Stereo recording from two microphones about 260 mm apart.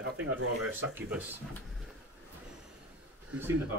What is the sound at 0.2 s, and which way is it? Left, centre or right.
Speech, right.